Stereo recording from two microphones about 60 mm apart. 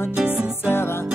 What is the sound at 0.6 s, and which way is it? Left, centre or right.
Music, left.